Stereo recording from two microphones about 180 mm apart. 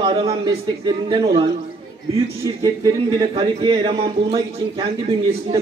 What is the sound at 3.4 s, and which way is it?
A man's voice, 25° right (ahead or behind).